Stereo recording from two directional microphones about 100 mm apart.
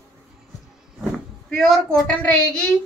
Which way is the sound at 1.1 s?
5° left (ahead or behind).